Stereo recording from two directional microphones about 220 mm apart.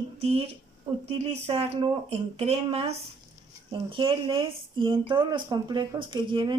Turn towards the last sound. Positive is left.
turn(degrees=-20)  # may be behind; listen again after turning